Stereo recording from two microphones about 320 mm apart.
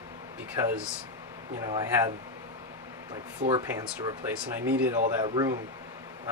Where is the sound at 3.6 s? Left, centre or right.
Centre.